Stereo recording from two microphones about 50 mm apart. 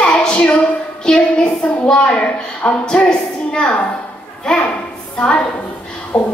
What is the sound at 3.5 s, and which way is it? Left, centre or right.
Speech, centre.